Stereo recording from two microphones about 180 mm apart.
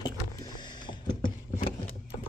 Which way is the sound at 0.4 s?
25° left (ahead or behind).